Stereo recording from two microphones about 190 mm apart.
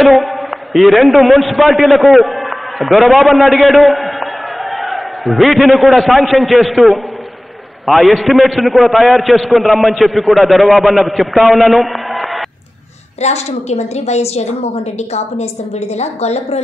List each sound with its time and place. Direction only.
0.0 s a man's voice: centre (ahead or behind)
13.2 s a woman's voice: 35° left (ahead or behind)
16.0 s a woman's voice: 35° left (ahead or behind)